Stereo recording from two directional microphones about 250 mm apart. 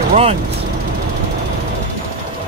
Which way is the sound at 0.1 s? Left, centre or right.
Right.